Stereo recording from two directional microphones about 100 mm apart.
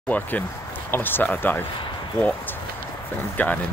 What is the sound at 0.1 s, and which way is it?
Speech, 15° left (ahead or behind).